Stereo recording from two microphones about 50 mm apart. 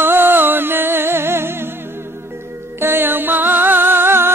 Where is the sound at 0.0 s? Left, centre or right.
Right.